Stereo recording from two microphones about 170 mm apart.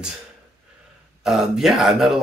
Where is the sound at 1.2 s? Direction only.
5° right (ahead or behind).